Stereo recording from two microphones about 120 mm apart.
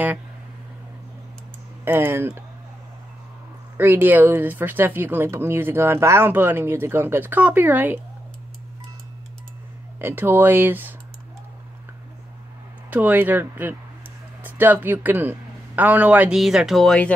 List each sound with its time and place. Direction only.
1.9 s speech: 20° right (ahead or behind)
3.7 s speech: 15° right (ahead or behind)
9.9 s speech: 15° right (ahead or behind)
12.9 s a man's voice: 15° right (ahead or behind)
16.3 s speech: centre (ahead or behind)